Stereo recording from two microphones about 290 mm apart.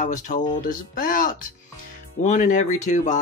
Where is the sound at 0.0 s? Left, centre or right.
Left.